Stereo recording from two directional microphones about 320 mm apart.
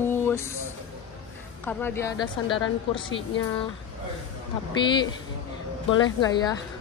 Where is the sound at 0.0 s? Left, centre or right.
Centre.